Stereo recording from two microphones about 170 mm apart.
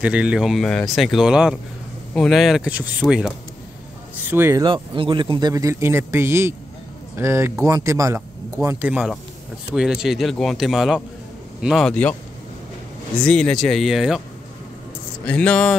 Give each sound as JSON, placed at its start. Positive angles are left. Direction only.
{"t": 0.0, "sound": "speech", "side_deg": -5}
{"t": 4.6, "sound": "speech", "side_deg": -30}
{"t": 13.2, "sound": "speech", "side_deg": 5}
{"t": 15.2, "sound": "speech", "side_deg": 5}